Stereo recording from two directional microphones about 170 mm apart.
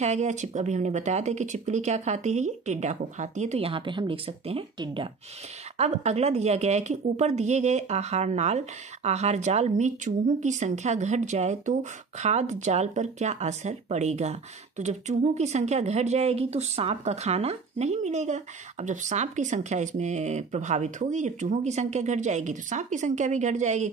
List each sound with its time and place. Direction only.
0.0 s a woman's voice: 40° right (ahead or behind)
5.8 s a woman's voice: 40° right (ahead or behind)